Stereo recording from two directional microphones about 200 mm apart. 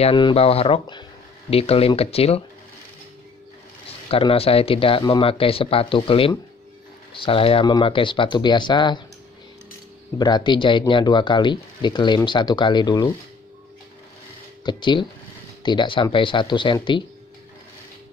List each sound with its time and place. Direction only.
0.0 s speech: 25° left (ahead or behind)
4.1 s speech: 30° left (ahead or behind)
10.1 s speech: 20° left (ahead or behind)
14.6 s speech: 20° left (ahead or behind)